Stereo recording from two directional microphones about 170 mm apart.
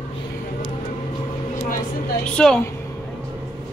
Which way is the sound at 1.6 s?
55° left (ahead or behind).